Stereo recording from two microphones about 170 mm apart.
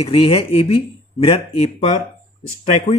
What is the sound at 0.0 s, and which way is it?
Speech, 35° left (ahead or behind).